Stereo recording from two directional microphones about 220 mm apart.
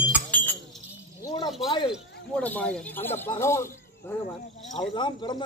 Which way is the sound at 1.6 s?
20° left (ahead or behind).